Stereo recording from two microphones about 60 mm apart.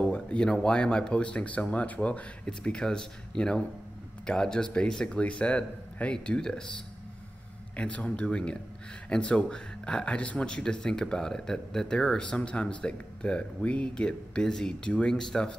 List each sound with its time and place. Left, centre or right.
0.0 s speech: centre
7.7 s speech: left